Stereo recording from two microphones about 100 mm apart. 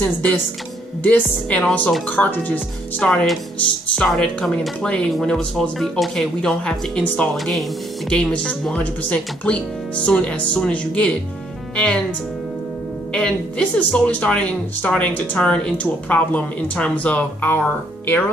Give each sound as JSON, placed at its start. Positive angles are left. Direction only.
{"t": 0.0, "sound": "speech", "side_deg": 15}
{"t": 1.6, "sound": "speech", "side_deg": 5}
{"t": 2.0, "sound": "speech", "side_deg": 15}
{"t": 3.1, "sound": "a woman's voice", "side_deg": 5}
{"t": 13.1, "sound": "speech", "side_deg": 10}